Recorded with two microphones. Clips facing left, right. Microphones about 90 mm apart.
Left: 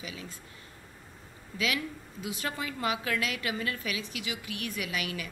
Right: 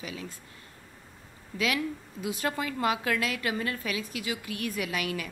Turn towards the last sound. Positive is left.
turn(degrees=-45)  # may be behind; listen again after turning